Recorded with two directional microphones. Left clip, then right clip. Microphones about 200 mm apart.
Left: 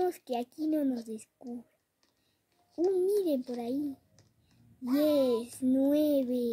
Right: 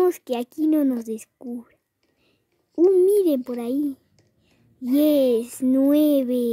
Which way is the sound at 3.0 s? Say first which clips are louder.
Right 11 dB; 55° right (ahead or behind).